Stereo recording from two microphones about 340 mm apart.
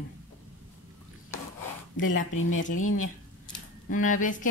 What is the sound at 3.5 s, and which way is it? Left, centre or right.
Speech, left.